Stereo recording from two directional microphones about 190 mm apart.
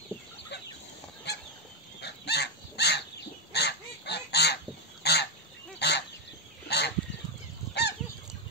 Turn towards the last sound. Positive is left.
turn(degrees=60)  # may be behind; listen again after turning